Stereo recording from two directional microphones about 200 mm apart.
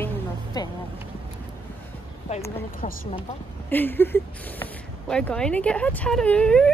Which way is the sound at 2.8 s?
35° left (ahead or behind).